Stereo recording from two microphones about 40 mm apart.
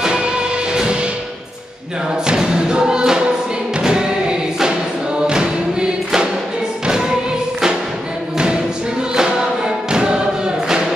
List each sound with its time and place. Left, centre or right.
0.0 s music: centre
2.2 s music: centre
3.8 s choir: centre
5.2 s music: centre
9.8 s music: right